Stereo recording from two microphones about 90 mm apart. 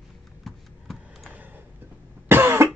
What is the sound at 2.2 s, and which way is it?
Cough, 25° right (ahead or behind).